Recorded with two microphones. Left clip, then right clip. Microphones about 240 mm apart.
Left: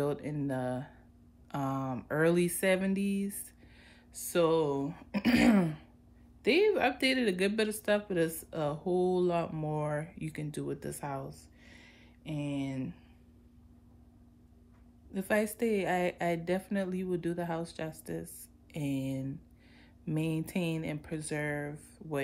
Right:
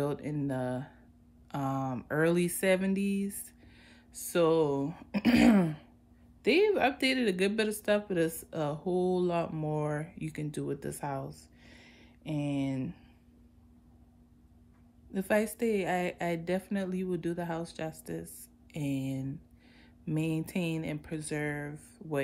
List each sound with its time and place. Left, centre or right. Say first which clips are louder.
0.0 s speech: even; centre
11.6 s a sound: left 1 dB; centre
15.1 s speech: right 1 dB; centre